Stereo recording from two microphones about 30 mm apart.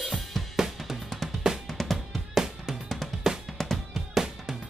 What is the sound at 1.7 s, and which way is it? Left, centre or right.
Music, centre.